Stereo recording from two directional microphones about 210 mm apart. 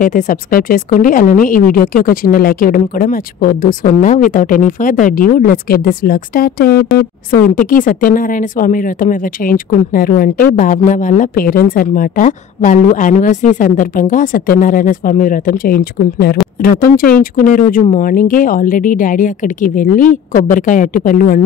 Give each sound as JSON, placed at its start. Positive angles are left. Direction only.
{"t": 0.0, "sound": "speech", "side_deg": 40}